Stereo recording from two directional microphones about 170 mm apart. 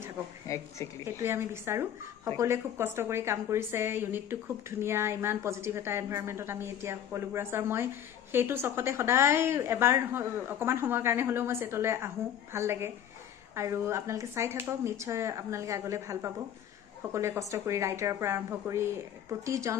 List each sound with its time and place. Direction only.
0.5 s speech: 15° left (ahead or behind)
1.0 s a woman's voice: 15° right (ahead or behind)